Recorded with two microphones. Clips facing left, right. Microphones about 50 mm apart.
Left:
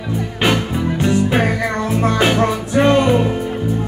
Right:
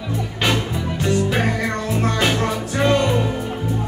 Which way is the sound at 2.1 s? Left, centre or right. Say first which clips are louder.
Left 4 dB; centre.